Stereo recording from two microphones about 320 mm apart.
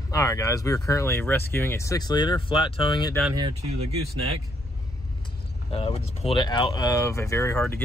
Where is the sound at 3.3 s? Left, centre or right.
Centre.